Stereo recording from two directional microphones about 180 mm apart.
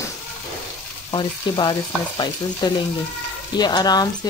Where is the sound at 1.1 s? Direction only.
25° left (ahead or behind).